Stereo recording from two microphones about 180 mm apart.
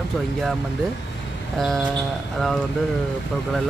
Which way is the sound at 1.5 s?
Centre (ahead or behind).